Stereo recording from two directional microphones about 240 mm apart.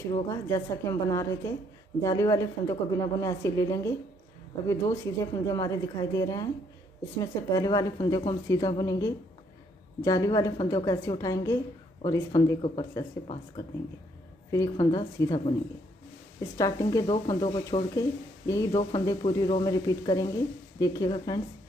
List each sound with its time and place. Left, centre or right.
0.1 s a woman's voice: centre
16.5 s a woman's voice: centre